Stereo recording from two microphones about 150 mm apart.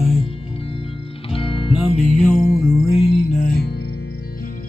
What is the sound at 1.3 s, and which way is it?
Music, 35° left (ahead or behind).